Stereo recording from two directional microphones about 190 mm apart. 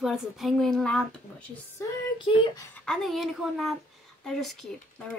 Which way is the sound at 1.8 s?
20° left (ahead or behind).